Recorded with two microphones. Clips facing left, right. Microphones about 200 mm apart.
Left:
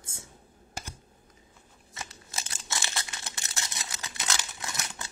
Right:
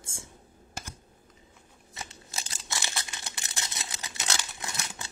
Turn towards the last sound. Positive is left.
turn(degrees=-25)  # may be behind; listen again after turning